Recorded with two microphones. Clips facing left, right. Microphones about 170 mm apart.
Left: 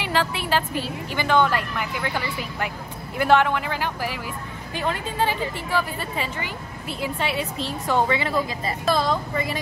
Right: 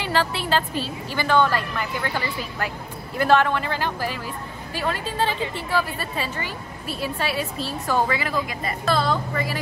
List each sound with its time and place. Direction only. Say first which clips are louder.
0.0 s a woman's voice: right 1 dB; 15° left (ahead or behind)